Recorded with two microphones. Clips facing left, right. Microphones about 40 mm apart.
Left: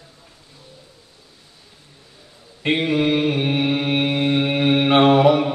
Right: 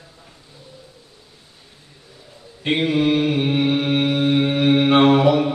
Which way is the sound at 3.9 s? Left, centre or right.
Left.